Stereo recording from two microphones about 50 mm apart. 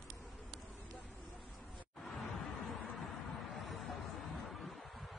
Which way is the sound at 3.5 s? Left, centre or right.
Centre.